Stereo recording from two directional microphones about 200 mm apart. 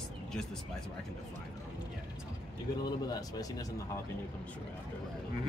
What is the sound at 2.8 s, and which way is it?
Speech, 20° left (ahead or behind).